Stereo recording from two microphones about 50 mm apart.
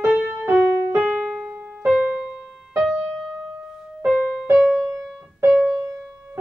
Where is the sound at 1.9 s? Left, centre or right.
Right.